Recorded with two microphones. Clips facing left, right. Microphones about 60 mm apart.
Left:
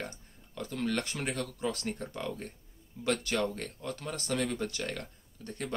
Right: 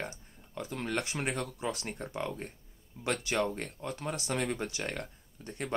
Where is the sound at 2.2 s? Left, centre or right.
Right.